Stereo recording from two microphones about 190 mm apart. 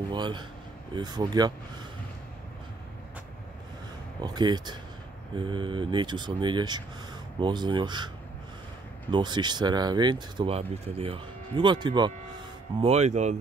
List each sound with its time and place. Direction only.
0.1 s speech: 25° right (ahead or behind)
4.2 s speech: 20° right (ahead or behind)
9.1 s speech: 25° right (ahead or behind)
12.8 s speech: 35° right (ahead or behind)